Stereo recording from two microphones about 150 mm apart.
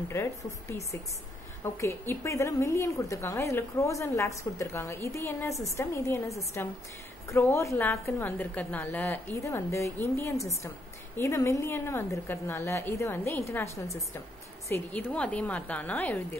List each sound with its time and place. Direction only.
0.1 s a woman's voice: 15° left (ahead or behind)